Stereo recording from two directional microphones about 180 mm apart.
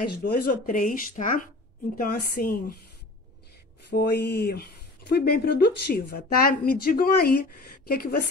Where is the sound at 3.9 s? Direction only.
65° left (ahead or behind).